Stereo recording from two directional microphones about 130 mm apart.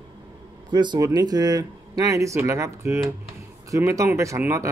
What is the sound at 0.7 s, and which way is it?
Speech, 35° right (ahead or behind).